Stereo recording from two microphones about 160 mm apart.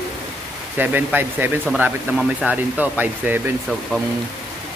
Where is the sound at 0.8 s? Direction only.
10° right (ahead or behind).